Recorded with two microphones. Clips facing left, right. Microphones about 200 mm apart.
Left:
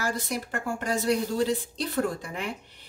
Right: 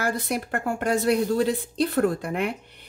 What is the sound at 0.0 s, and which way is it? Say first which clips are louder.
A woman's voice: right 4 dB; 60° right (ahead or behind).